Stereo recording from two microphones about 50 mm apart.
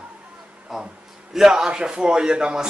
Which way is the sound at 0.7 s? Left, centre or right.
Centre.